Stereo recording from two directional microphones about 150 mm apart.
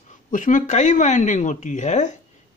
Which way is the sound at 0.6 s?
50° left (ahead or behind).